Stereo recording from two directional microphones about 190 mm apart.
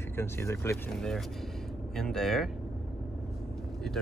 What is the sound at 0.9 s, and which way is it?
Speech, centre (ahead or behind).